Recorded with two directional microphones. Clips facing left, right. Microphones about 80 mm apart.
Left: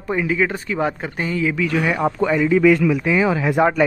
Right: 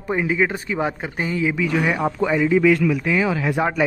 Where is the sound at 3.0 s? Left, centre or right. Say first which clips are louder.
Left 2 dB; left.